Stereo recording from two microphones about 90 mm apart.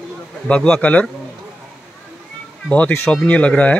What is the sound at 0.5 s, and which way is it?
Speech, 15° left (ahead or behind).